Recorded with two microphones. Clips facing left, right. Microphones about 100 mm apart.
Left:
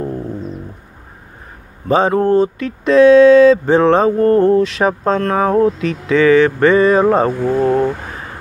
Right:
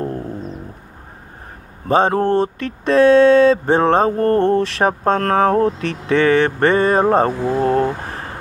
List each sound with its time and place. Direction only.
1.9 s speech: 45° right (ahead or behind)
6.8 s speech: 45° right (ahead or behind)